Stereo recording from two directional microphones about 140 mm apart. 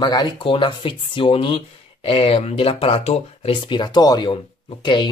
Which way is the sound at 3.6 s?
35° left (ahead or behind).